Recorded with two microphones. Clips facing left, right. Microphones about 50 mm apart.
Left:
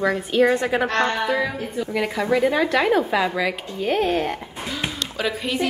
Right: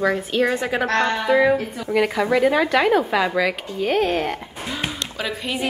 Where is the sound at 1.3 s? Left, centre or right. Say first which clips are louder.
Right 7 dB; centre.